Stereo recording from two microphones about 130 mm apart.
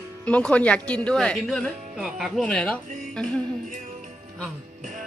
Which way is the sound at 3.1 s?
5° left (ahead or behind).